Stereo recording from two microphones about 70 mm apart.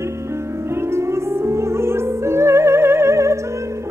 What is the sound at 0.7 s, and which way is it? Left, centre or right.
Music, right.